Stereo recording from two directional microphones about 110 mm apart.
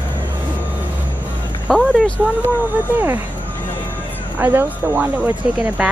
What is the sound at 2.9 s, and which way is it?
Speech, 15° right (ahead or behind).